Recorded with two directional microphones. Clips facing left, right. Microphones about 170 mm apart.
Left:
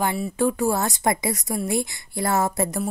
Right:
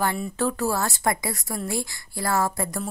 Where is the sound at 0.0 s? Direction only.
15° left (ahead or behind).